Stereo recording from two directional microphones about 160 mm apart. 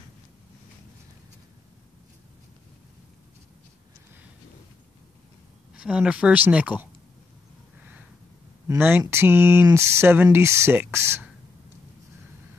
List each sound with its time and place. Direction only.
5.8 s speech: 5° right (ahead or behind)
8.6 s speech: 15° right (ahead or behind)